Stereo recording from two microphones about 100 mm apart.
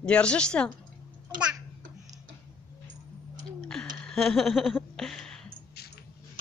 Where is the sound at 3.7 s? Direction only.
5° left (ahead or behind).